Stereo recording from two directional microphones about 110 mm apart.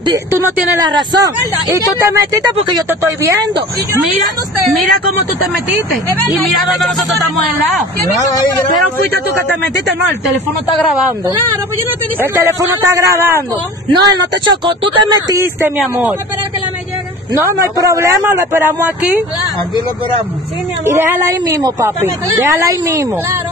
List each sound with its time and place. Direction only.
0.3 s a man's voice: 25° right (ahead or behind)
0.8 s a man's voice: 40° right (ahead or behind); by 3.3 s 25° right (ahead or behind)
5.7 s a man's voice: 20° right (ahead or behind)
12.2 s a man's voice: 25° right (ahead or behind)
13.9 s speech: 40° right (ahead or behind)
17.6 s a man's voice: 30° right (ahead or behind)
20.8 s a man's voice: 25° right (ahead or behind)